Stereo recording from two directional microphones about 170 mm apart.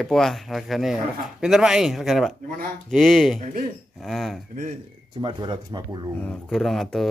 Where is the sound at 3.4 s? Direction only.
50° right (ahead or behind).